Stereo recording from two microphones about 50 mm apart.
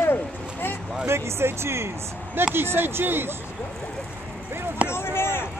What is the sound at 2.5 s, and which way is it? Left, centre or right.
Speech, right.